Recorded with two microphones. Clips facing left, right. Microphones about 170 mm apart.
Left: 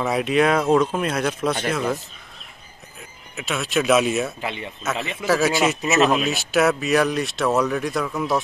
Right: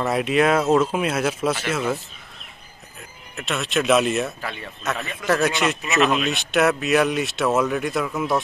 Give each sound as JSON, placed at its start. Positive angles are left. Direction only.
{"t": 0.0, "sound": "speech", "side_deg": 0}
{"t": 3.0, "sound": "speech", "side_deg": 0}
{"t": 4.4, "sound": "speech", "side_deg": 20}
{"t": 5.2, "sound": "speech", "side_deg": 5}